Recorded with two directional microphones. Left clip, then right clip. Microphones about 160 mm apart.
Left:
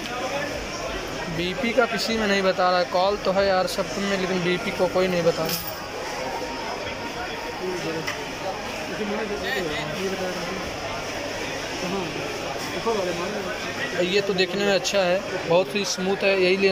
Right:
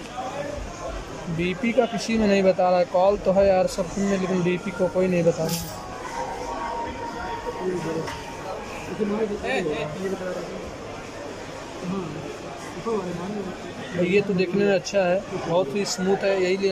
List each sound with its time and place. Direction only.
1.4 s speech: 15° right (ahead or behind)
14.0 s speech: 15° right (ahead or behind)